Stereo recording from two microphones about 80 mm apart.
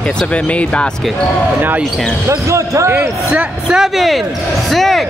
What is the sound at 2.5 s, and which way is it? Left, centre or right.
Speech, right.